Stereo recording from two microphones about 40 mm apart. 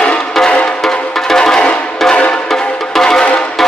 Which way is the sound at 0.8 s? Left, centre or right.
Centre.